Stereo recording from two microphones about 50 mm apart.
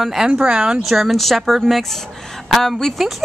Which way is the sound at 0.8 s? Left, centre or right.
Centre.